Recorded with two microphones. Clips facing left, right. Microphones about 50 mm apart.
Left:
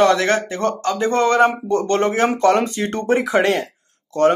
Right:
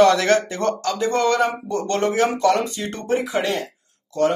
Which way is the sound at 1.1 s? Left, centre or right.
Left.